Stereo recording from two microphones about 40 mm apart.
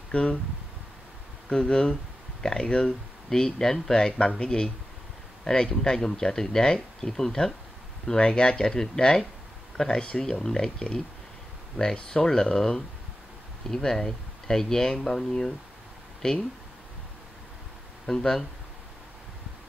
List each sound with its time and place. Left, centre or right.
0.1 s speech: left
1.5 s speech: left
18.0 s speech: centre